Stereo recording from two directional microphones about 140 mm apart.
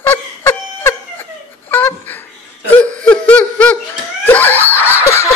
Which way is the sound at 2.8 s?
10° left (ahead or behind).